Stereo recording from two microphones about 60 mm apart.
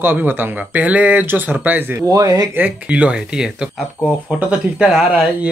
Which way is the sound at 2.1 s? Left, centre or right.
Right.